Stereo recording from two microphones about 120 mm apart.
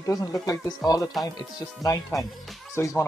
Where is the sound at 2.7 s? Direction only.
25° left (ahead or behind).